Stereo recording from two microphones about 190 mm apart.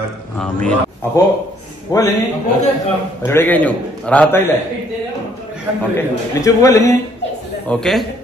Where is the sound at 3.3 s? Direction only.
10° left (ahead or behind).